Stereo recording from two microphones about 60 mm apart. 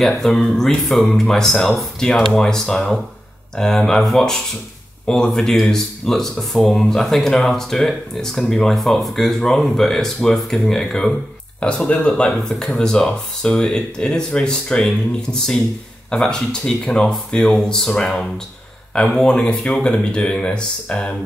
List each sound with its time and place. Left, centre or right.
0.2 s speech: centre
11.6 s speech: centre